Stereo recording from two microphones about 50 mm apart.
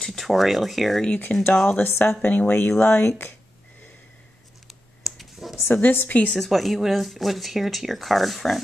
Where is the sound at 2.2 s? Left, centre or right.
Left.